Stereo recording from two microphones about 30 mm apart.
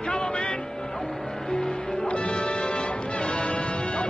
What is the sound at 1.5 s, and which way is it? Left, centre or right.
Music, left.